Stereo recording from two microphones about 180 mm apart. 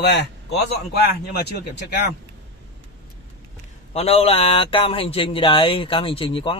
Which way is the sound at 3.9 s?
35° left (ahead or behind).